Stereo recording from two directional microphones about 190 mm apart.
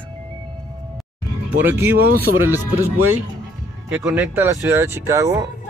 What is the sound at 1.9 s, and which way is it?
Speech, 55° right (ahead or behind).